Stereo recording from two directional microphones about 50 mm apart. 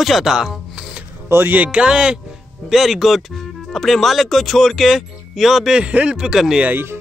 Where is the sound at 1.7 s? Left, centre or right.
Centre.